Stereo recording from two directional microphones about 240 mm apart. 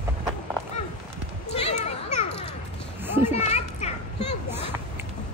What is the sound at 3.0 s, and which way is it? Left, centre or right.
Children playing, centre.